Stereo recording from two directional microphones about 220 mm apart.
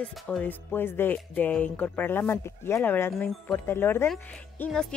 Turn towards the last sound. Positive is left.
turn(degrees=5)  # may be behind; listen again after turning